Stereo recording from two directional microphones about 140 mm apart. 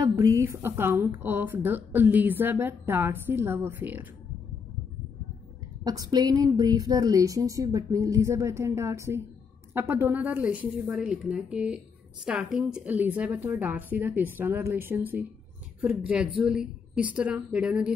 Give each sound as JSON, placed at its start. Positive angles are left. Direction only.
{"t": 0.0, "sound": "a woman's voice", "side_deg": -25}
{"t": 5.9, "sound": "a woman's voice", "side_deg": -25}
{"t": 16.3, "sound": "a woman's voice", "side_deg": -5}